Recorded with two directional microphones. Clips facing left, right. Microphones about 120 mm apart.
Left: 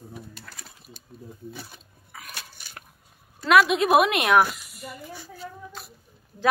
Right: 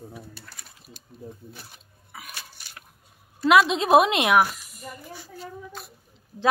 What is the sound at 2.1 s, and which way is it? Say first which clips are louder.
Biting: right 1 dB; 10° right (ahead or behind).